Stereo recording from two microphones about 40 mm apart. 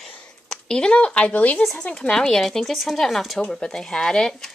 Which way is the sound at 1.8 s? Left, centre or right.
Left.